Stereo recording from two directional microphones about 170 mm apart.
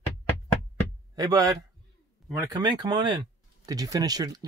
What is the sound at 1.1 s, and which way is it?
Speech, 20° right (ahead or behind).